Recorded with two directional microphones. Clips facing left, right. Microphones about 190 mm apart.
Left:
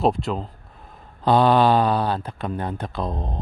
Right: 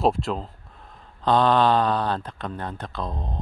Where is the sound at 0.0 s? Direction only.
Centre (ahead or behind).